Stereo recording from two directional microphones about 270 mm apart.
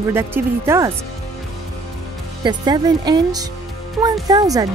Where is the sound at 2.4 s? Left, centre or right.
Centre.